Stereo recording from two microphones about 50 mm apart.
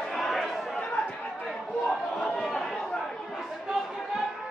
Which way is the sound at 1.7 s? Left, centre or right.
Centre.